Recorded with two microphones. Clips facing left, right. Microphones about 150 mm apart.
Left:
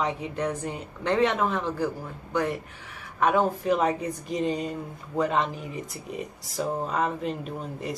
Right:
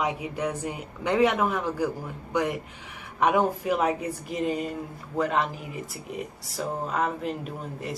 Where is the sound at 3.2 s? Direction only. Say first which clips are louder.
Even; 15° right (ahead or behind).